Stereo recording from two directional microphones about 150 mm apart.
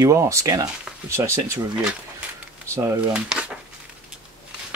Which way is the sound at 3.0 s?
5° right (ahead or behind).